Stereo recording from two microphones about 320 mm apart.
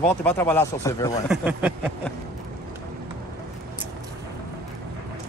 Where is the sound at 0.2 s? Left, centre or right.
Centre.